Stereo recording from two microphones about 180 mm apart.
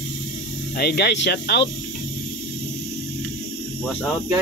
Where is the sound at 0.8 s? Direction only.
65° left (ahead or behind).